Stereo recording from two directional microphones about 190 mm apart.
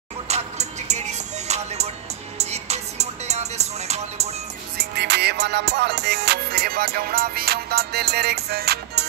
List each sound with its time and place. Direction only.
0.3 s music: 35° right (ahead or behind)
4.7 s music: 60° right (ahead or behind)